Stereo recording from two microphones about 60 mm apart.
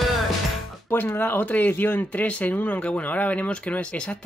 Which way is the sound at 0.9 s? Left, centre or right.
Left.